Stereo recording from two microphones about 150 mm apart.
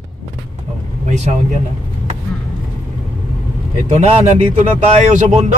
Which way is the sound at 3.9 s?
50° right (ahead or behind).